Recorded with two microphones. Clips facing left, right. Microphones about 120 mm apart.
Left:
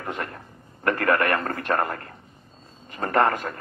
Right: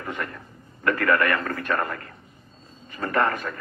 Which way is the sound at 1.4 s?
40° left (ahead or behind).